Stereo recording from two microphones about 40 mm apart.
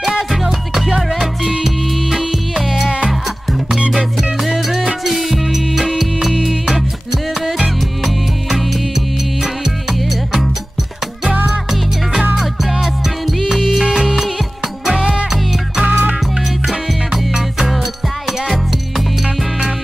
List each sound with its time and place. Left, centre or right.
0.3 s music: centre
3.9 s music: centre
8.0 s music: centre
12.4 s music: centre
15.9 s music: right
16.6 s music: centre